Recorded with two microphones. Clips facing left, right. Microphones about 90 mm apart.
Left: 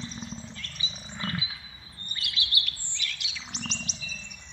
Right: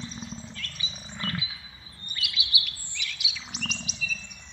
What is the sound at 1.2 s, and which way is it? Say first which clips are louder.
Roaring cats: even; 25° left (ahead or behind).